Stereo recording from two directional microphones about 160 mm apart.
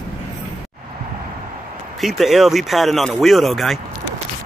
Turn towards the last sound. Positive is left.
turn(degrees=0)  # may be behind; listen again after turning